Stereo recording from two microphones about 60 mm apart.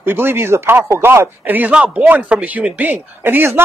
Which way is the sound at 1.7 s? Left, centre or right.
Right.